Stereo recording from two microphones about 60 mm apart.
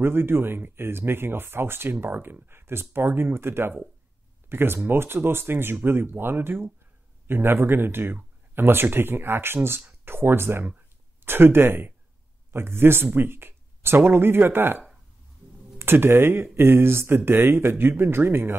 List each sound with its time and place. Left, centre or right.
0.0 s speech: right
15.8 s speech: right